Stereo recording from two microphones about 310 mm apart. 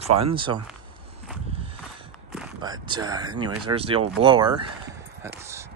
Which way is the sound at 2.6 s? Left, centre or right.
Centre.